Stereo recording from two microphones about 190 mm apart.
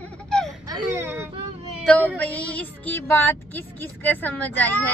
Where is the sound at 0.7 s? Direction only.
15° right (ahead or behind).